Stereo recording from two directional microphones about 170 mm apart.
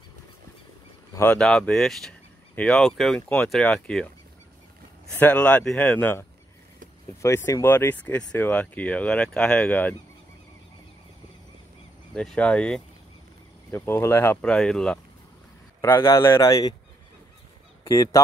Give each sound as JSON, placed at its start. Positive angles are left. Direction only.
{"t": 1.1, "sound": "speech", "side_deg": 10}
{"t": 5.1, "sound": "speech", "side_deg": 10}
{"t": 12.1, "sound": "speech", "side_deg": 5}
{"t": 15.8, "sound": "speech", "side_deg": 15}
{"t": 17.8, "sound": "speech", "side_deg": 20}